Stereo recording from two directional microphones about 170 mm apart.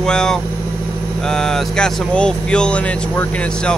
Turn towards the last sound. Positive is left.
turn(degrees=5)  # may be behind; listen again after turning